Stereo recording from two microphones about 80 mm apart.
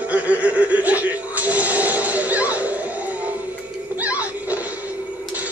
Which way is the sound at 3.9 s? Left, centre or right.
Centre.